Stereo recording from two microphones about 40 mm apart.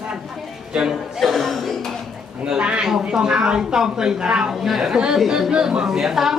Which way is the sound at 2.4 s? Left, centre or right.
Right.